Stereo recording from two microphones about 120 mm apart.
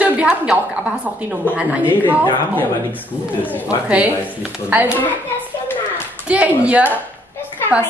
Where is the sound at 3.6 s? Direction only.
10° right (ahead or behind).